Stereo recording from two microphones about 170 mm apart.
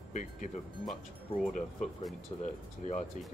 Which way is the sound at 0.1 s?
45° left (ahead or behind).